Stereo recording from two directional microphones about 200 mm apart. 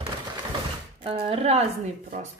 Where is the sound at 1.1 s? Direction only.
30° right (ahead or behind).